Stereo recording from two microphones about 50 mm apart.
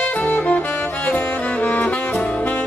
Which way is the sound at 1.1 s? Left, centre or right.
Left.